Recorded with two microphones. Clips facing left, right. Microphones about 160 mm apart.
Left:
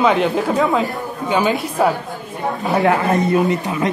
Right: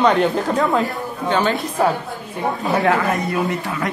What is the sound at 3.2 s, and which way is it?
Speech, 20° left (ahead or behind).